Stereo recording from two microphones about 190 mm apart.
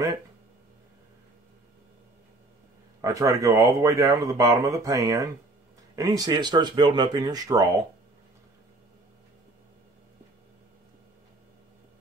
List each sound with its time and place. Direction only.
3.0 s speech: 15° right (ahead or behind)